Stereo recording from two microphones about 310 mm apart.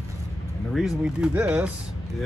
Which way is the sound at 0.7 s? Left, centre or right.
Centre.